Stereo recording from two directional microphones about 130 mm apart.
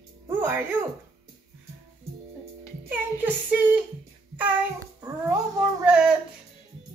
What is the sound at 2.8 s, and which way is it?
Speech, 15° right (ahead or behind).